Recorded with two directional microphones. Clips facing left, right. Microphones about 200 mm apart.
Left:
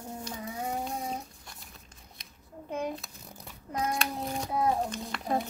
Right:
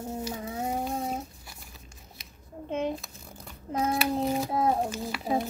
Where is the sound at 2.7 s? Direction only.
25° right (ahead or behind).